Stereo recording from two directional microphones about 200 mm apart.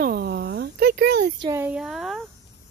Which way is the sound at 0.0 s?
50° right (ahead or behind).